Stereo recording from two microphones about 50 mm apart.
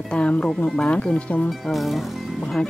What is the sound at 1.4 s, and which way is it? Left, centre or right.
Cricket, centre.